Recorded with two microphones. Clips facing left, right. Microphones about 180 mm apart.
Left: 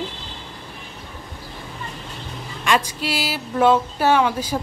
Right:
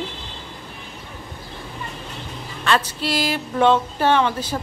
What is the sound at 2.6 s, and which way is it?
Speech, 10° left (ahead or behind).